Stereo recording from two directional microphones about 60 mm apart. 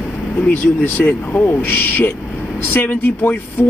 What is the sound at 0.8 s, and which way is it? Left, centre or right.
A man's voice, left.